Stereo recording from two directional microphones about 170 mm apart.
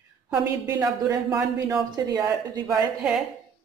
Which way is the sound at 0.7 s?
20° right (ahead or behind).